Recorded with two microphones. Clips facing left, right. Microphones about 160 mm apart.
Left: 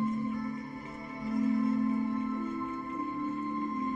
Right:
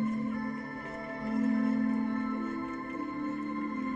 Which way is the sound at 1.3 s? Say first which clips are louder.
Even; 65° right (ahead or behind).